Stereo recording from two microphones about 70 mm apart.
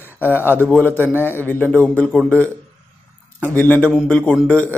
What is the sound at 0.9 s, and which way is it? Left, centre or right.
Speech, right.